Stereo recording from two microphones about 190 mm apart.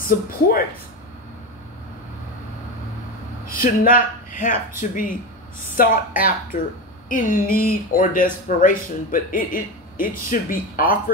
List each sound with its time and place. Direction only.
0.0 s speech: 50° left (ahead or behind)
3.6 s speech: 45° left (ahead or behind)